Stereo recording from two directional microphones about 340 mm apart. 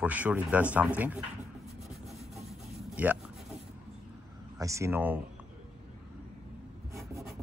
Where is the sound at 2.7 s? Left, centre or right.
Centre.